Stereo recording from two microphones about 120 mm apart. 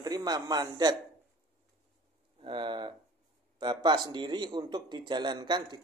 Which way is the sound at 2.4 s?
40° right (ahead or behind).